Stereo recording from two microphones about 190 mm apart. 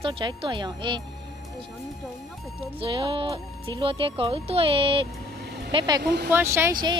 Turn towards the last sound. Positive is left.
turn(degrees=-15)  # may be behind; listen again after turning